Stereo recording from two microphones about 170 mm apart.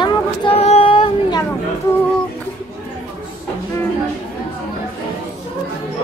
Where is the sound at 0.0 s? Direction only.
35° left (ahead or behind).